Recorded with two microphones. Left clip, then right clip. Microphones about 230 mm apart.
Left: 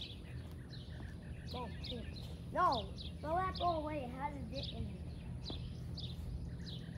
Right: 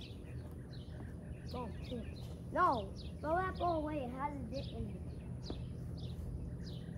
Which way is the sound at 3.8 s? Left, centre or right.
Left.